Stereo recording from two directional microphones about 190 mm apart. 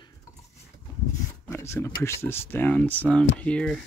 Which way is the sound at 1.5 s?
15° left (ahead or behind).